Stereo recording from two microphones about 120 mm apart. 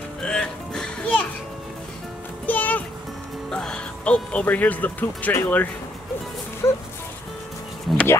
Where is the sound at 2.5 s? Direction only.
15° left (ahead or behind).